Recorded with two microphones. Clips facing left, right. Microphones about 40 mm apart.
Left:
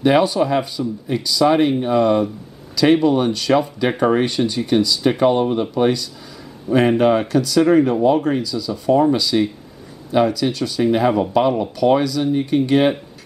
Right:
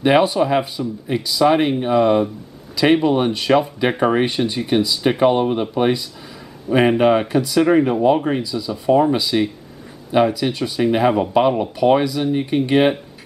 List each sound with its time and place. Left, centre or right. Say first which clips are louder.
0.0 s speech: even; centre